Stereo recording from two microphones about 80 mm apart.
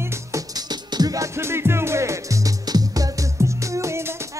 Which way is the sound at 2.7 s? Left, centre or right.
Right.